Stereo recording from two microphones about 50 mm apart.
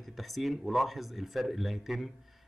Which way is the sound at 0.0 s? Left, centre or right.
Centre.